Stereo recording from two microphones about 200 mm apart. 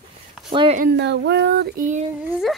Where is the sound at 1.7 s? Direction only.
40° right (ahead or behind).